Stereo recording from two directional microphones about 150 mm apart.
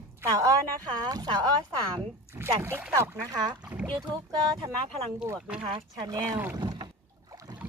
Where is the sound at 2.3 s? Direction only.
15° right (ahead or behind).